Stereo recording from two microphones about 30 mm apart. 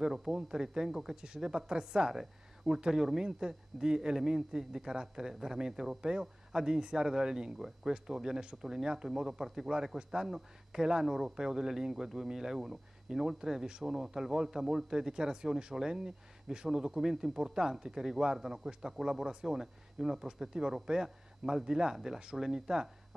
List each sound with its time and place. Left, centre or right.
0.0 s speech: right
1.1 s speech: right
2.9 s speech: centre
11.1 s speech: centre; by 14.0 s right
14.0 s speech: centre